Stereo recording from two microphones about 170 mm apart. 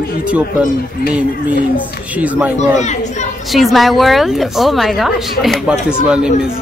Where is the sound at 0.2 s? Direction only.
5° right (ahead or behind).